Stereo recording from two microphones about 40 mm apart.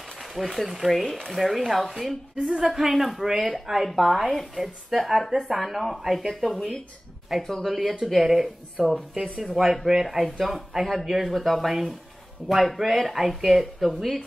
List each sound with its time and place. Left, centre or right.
0.4 s a woman's voice: centre
1.0 s speech: centre
1.3 s a woman's voice: centre
2.3 s a woman's voice: right
2.6 s a woman's voice: centre